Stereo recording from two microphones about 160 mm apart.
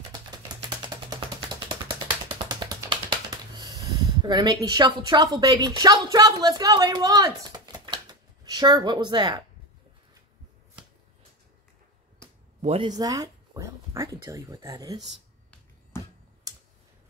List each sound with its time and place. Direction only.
0.8 s a sound: 25° right (ahead or behind)
4.2 s a woman's voice: 25° right (ahead or behind)
12.6 s speech: 35° right (ahead or behind)
12.9 s speech: 25° right (ahead or behind)
16.5 s clicking: 25° right (ahead or behind)